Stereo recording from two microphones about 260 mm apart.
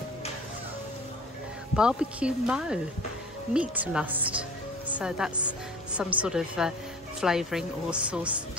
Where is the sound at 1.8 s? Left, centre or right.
Centre.